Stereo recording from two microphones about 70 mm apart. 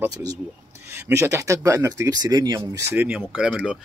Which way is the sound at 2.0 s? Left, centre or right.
Right.